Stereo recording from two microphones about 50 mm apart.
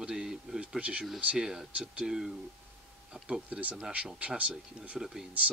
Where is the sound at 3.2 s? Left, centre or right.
Right.